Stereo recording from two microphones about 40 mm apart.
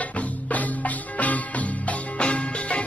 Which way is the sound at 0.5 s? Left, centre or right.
Left.